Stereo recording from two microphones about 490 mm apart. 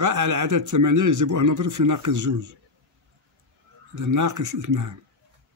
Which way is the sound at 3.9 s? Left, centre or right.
Right.